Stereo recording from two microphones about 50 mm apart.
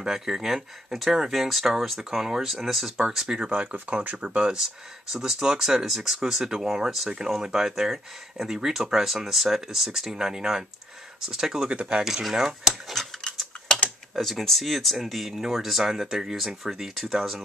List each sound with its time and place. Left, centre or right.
0.0 s speech: centre
3.3 s speech: right
4.4 s speech: centre
12.0 s speech: centre
14.4 s speech: centre